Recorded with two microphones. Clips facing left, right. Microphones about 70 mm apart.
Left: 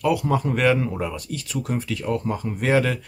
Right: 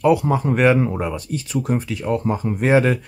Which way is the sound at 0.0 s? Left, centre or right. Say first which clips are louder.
Right 4 dB; right.